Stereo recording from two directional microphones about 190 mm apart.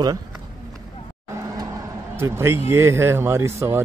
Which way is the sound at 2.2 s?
15° right (ahead or behind).